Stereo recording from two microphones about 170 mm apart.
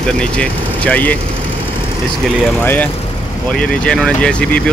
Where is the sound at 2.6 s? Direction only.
10° left (ahead or behind).